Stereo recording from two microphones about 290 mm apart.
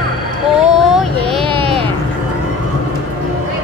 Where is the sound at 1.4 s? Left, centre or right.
Centre.